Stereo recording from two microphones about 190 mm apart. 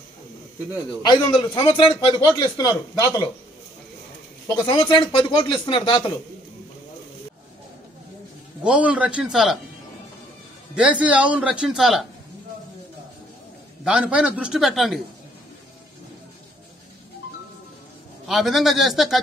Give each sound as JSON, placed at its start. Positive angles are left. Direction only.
{"t": 1.1, "sound": "speech", "side_deg": 25}
{"t": 4.6, "sound": "speech", "side_deg": 25}
{"t": 8.6, "sound": "a man's voice", "side_deg": -5}
{"t": 10.7, "sound": "a man's voice", "side_deg": -5}
{"t": 13.8, "sound": "a man's voice", "side_deg": -5}
{"t": 18.2, "sound": "a man's voice", "side_deg": 0}